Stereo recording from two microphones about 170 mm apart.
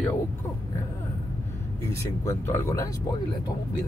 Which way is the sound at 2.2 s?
15° left (ahead or behind).